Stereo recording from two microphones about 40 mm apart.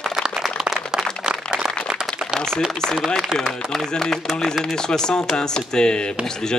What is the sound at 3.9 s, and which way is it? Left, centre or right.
A man's voice, centre.